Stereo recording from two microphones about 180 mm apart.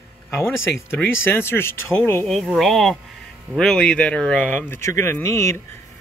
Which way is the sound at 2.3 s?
Centre (ahead or behind).